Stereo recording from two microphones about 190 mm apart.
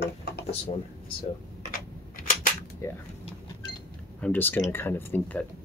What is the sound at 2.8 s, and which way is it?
Speech, 15° left (ahead or behind).